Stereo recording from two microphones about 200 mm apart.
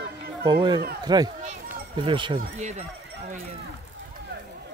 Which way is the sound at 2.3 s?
35° right (ahead or behind).